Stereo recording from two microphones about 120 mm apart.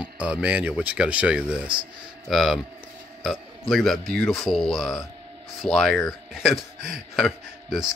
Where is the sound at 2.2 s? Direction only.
Centre (ahead or behind).